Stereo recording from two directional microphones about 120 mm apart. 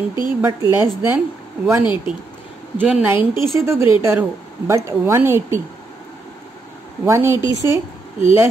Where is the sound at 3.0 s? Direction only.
15° right (ahead or behind).